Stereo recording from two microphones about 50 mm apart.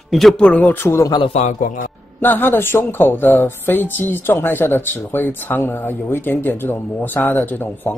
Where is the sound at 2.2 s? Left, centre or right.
Left.